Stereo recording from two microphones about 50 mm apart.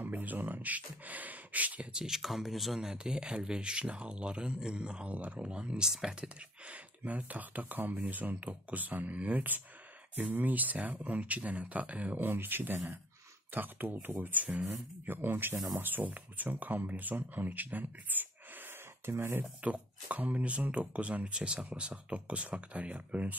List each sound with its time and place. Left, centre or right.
0.0 s speech: right
2.0 s speech: centre
2.8 s speech: centre
5.9 s speech: centre
6.2 s speech: right
12.3 s speech: right
14.7 s speech: right
15.8 s speech: right
19.0 s speech: right
19.6 s speech: right